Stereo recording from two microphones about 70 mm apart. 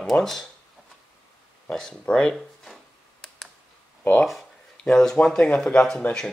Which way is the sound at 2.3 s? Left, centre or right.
Centre.